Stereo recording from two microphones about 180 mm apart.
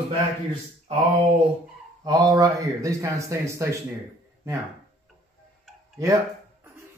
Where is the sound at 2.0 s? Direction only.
20° right (ahead or behind).